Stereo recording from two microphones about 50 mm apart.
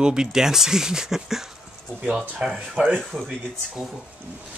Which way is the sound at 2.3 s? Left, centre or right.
Right.